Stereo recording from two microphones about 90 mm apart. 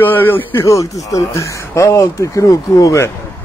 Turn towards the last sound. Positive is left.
turn(degrees=35)  # may be behind; listen again after turning